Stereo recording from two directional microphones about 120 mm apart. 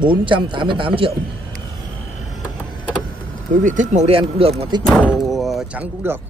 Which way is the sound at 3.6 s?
90° right.